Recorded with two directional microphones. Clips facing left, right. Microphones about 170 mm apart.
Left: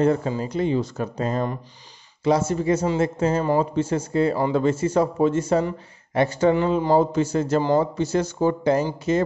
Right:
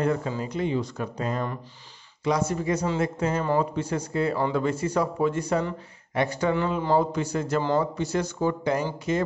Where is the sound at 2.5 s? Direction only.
25° left (ahead or behind).